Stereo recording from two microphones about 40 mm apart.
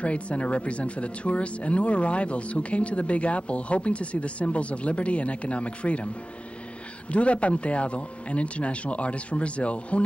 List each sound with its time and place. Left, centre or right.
0.0 s speech: left
7.1 s speech: left